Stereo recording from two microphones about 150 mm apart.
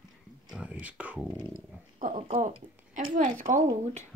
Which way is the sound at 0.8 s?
10° right (ahead or behind).